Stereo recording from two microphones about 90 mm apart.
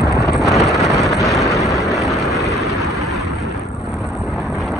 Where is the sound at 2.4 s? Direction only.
40° left (ahead or behind).